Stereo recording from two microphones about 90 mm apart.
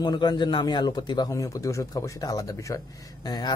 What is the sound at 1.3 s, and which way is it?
Speech, 35° left (ahead or behind).